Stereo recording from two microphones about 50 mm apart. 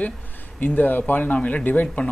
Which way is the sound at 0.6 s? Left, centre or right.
Left.